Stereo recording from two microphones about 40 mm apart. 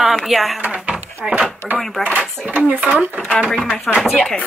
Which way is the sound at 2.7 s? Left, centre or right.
Right.